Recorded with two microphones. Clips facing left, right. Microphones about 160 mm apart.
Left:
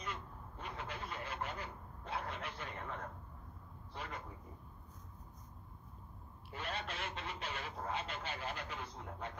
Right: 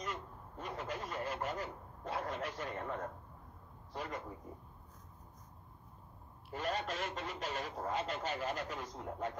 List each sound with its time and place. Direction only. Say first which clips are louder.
0.0 s a sound: right 3 dB; 45° right (ahead or behind)
3.9 s a man's voice: right 4 dB; 40° right (ahead or behind)
6.5 s speech: right 6 dB; 40° right (ahead or behind)